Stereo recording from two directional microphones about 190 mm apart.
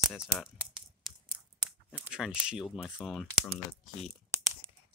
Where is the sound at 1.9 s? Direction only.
5° right (ahead or behind).